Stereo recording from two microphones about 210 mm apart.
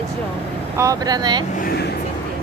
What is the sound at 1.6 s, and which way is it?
Speech, 45° left (ahead or behind).